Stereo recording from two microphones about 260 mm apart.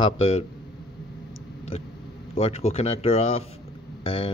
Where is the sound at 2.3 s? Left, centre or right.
Left.